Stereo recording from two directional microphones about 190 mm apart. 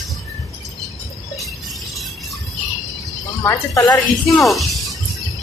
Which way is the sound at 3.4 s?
15° left (ahead or behind).